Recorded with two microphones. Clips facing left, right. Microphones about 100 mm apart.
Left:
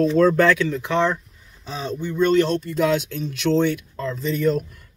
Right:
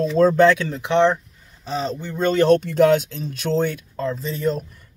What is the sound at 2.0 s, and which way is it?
Speech, 50° right (ahead or behind).